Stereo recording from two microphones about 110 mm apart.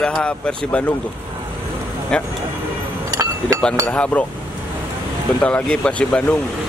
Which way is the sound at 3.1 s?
30° right (ahead or behind).